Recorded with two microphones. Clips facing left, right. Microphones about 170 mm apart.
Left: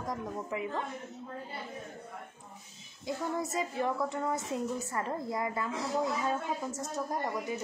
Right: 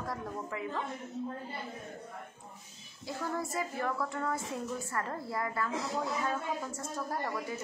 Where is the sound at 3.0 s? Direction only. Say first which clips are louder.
Left 2 dB; 20° left (ahead or behind).